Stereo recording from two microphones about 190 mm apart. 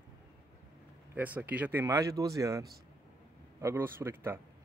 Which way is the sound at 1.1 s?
10° right (ahead or behind).